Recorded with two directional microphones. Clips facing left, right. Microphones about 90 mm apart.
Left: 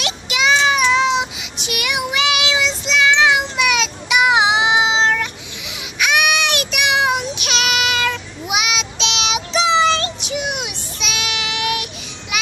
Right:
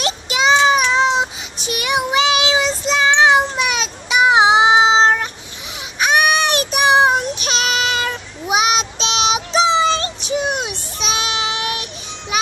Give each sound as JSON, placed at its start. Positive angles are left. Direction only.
{"t": 0.0, "sound": "child singing", "side_deg": -35}